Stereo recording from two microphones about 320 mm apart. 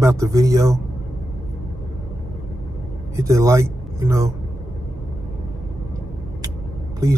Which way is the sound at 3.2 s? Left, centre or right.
Centre.